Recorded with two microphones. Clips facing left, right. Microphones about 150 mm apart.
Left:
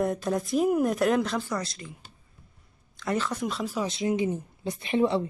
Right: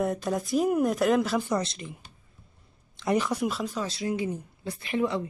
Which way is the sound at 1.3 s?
20° right (ahead or behind).